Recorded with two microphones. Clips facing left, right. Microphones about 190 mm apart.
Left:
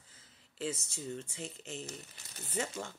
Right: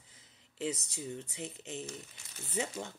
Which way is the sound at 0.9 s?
15° right (ahead or behind).